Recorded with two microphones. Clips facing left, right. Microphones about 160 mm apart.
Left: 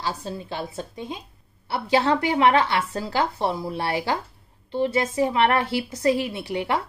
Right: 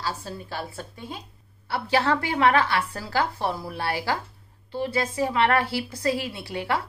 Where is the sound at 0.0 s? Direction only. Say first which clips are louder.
Left 2 dB; 20° left (ahead or behind).